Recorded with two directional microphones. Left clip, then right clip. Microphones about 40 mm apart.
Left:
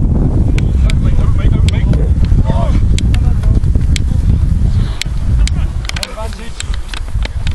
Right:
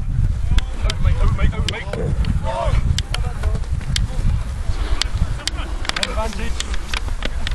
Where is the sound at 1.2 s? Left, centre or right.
Centre.